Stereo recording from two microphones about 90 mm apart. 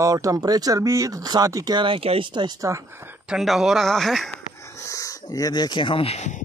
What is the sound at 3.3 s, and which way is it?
Speech, 5° right (ahead or behind).